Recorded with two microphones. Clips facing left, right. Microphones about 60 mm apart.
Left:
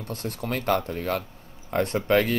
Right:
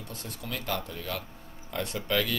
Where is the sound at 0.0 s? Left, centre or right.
Left.